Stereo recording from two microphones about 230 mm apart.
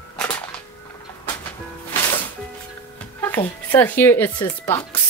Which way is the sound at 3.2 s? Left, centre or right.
Centre.